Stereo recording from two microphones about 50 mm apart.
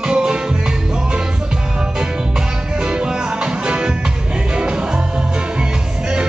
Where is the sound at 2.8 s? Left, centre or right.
Centre.